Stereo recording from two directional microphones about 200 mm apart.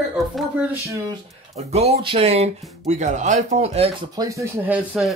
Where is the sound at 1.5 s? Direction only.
30° right (ahead or behind).